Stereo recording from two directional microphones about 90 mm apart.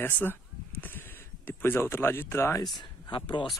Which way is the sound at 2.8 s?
60° left (ahead or behind).